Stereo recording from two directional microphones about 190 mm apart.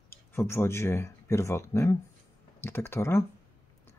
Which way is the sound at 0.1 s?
15° left (ahead or behind).